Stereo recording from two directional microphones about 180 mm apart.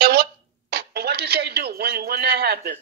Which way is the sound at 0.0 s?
65° right (ahead or behind).